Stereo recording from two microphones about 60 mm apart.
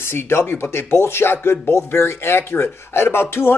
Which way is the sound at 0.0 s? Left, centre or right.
Left.